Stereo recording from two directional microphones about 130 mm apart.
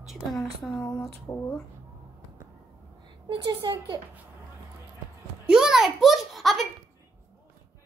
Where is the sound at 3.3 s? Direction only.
30° right (ahead or behind).